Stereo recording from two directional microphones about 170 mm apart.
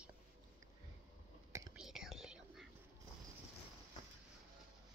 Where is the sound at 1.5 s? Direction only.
20° right (ahead or behind).